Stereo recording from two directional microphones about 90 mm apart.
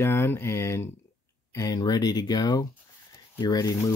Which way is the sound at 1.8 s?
45° left (ahead or behind).